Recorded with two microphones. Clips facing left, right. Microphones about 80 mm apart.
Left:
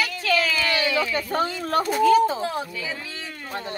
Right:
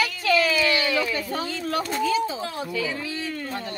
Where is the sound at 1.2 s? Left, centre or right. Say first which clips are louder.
Left 4 dB; left.